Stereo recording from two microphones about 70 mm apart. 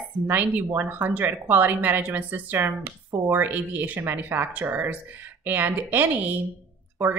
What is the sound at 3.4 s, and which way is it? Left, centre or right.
A woman's voice, right.